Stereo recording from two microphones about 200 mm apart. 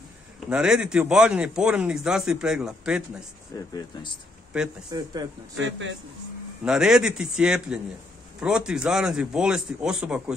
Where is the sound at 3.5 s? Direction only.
20° left (ahead or behind).